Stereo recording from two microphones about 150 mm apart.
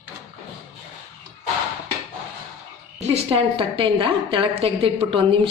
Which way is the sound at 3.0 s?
40° right (ahead or behind).